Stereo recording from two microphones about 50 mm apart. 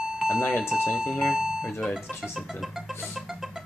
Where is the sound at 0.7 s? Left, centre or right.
Centre.